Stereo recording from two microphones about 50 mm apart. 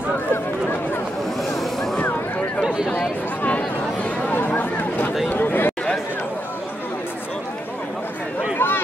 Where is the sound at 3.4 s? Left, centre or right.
Left.